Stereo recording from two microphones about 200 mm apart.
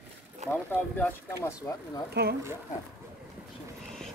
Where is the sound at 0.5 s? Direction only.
10° left (ahead or behind).